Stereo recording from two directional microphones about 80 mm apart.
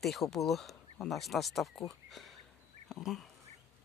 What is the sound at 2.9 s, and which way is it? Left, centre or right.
Speech, centre.